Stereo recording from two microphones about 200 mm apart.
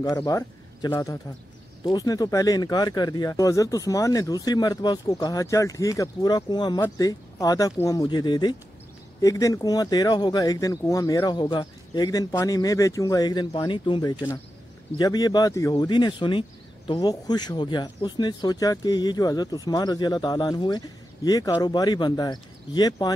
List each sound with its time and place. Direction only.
0.0 s speech: 15° left (ahead or behind)